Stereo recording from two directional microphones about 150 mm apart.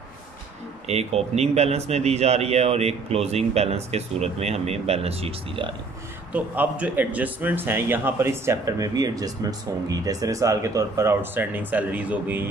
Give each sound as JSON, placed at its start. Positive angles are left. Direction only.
{"t": 0.8, "sound": "a man's voice", "side_deg": -45}
{"t": 6.3, "sound": "a man's voice", "side_deg": -10}